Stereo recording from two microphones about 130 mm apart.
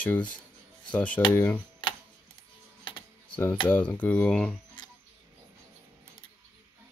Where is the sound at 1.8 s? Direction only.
40° left (ahead or behind).